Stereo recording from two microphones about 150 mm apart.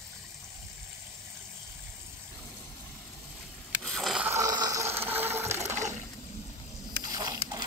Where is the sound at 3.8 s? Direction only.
5° left (ahead or behind).